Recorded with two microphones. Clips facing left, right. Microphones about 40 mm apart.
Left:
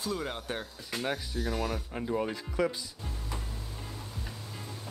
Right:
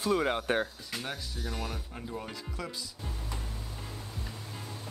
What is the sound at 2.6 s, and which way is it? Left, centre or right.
Speech, left.